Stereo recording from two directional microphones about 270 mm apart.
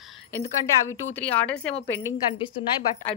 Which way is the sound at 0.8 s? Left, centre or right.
Centre.